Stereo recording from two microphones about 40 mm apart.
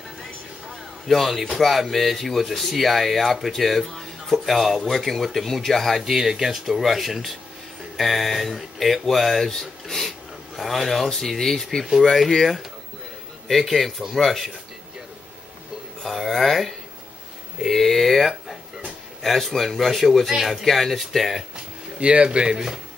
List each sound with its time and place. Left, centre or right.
0.7 s a sound: centre
1.6 s speech: centre
4.8 s speech: centre
6.0 s speech: centre
9.5 s a sound: centre
11.1 s speech: centre
16.0 s speech: centre
21.3 s speech: centre
22.0 s a man's voice: right